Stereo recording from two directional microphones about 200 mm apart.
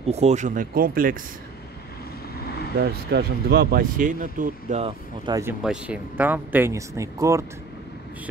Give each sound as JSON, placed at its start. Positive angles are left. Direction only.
{"t": 0.0, "sound": "speech", "side_deg": -30}
{"t": 2.8, "sound": "speech", "side_deg": -55}
{"t": 5.4, "sound": "speech", "side_deg": -5}